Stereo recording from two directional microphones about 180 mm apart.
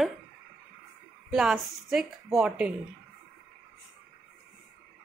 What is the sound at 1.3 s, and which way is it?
A woman's voice, centre (ahead or behind).